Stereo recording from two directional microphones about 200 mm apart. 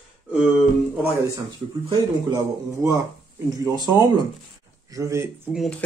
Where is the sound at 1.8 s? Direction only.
15° right (ahead or behind).